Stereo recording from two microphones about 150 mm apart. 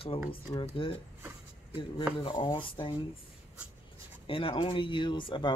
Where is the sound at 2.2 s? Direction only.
35° left (ahead or behind).